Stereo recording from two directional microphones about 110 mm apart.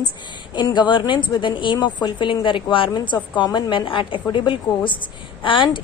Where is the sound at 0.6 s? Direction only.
45° left (ahead or behind).